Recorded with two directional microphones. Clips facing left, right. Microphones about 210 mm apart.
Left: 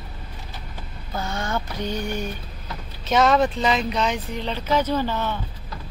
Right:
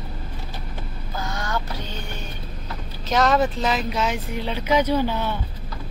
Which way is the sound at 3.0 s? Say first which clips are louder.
Left 1 dB; centre (ahead or behind).